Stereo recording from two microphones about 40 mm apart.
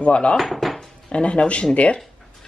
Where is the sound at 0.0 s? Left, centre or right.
Left.